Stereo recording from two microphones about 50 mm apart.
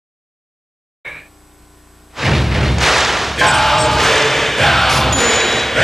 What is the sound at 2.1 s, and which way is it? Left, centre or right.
Music, centre.